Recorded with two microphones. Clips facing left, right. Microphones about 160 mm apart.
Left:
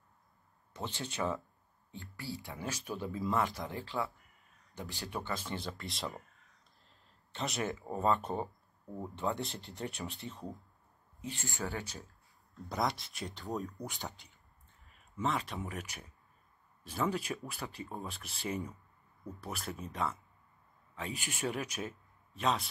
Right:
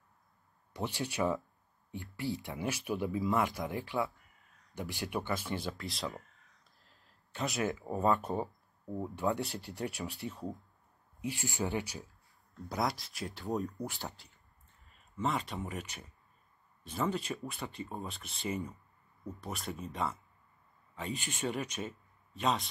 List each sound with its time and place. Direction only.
0.7 s speech: 10° right (ahead or behind)
5.7 s speech: centre (ahead or behind)
11.1 s speech: 15° right (ahead or behind)
12.6 s speech: centre (ahead or behind)